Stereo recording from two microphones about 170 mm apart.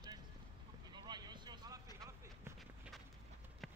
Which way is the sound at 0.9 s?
25° right (ahead or behind).